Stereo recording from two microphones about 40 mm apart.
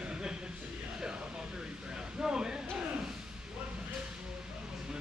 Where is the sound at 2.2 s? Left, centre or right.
Centre.